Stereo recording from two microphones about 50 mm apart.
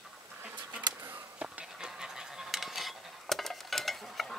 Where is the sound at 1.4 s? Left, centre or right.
Right.